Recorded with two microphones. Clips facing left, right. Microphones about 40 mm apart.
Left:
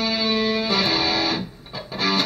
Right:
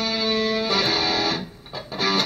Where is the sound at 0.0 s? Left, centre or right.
Centre.